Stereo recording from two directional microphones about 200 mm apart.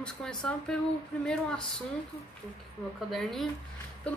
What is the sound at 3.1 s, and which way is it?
Speech, centre (ahead or behind).